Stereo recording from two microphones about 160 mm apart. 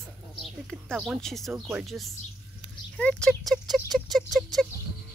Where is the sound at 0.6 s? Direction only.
5° left (ahead or behind).